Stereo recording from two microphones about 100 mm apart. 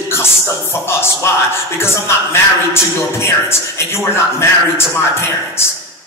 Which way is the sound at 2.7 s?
25° left (ahead or behind).